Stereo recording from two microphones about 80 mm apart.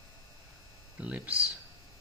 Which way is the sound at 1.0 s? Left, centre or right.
Centre.